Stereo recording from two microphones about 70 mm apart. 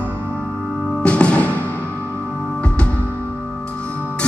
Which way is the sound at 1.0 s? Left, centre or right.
Centre.